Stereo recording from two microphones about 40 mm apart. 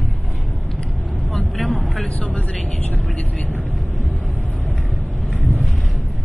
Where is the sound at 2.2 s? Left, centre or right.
Left.